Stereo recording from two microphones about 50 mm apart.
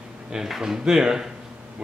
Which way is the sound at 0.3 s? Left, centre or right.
Centre.